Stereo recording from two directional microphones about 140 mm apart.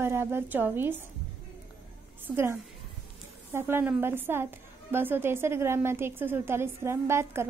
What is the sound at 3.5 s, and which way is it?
A woman's voice, 15° right (ahead or behind).